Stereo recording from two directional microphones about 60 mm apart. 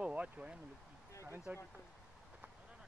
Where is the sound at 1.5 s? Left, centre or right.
Right.